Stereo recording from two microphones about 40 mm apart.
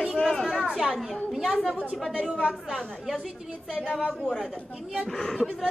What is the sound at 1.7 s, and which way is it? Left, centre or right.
Speech, right.